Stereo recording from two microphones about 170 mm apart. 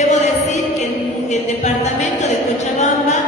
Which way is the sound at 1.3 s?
45° left (ahead or behind).